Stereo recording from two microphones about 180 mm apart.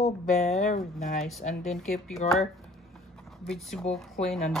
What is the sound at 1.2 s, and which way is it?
Speech, centre (ahead or behind).